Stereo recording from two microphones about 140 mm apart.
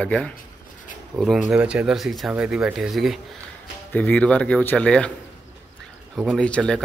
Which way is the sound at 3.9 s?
10° left (ahead or behind).